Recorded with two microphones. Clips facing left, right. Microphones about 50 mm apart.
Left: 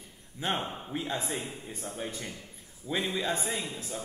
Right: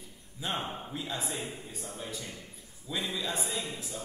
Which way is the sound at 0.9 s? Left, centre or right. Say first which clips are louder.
Left 3 dB; left.